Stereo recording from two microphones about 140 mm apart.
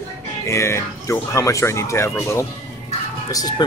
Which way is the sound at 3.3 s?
25° left (ahead or behind).